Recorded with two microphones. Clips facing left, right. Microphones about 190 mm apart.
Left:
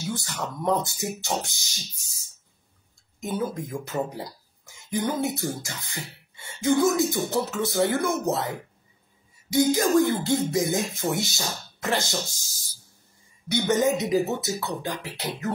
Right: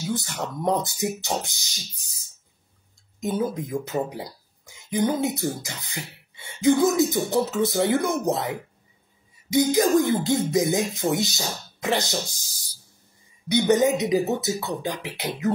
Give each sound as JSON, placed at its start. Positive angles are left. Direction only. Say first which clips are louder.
{"t": 0.1, "sound": "speech", "louder": "right 4 dB", "side_deg": -20}
{"t": 3.2, "sound": "speech", "louder": "right 3 dB", "side_deg": -20}
{"t": 9.5, "sound": "speech", "louder": "right 2 dB", "side_deg": -20}